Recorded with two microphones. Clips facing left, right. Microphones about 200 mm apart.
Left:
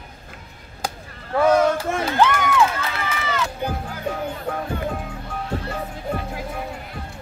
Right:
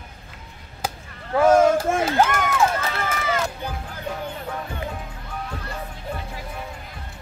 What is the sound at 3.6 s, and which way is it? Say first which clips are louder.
Music: left 4 dB; 45° left (ahead or behind).